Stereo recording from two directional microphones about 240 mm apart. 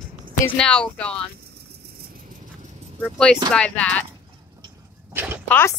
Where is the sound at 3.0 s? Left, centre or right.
Centre.